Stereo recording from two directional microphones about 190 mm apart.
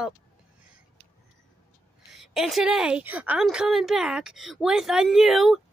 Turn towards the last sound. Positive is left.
turn(degrees=0)  # may be behind; listen again after turning